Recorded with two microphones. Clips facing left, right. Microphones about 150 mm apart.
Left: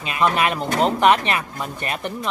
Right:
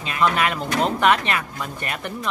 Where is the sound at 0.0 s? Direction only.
20° left (ahead or behind).